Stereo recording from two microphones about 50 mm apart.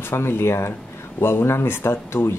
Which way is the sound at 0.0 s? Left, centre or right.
Left.